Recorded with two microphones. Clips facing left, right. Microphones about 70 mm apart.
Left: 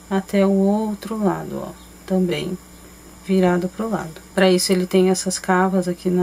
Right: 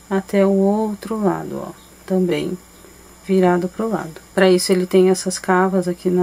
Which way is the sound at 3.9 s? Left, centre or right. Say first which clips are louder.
Right 2 dB; centre.